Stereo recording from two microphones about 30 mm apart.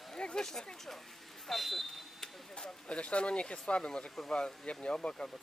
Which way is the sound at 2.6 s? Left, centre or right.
Left.